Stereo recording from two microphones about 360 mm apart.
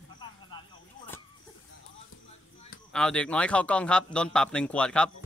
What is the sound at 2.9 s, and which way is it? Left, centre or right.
A man's voice, centre.